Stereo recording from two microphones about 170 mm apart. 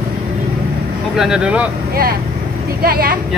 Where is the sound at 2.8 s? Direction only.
55° right (ahead or behind).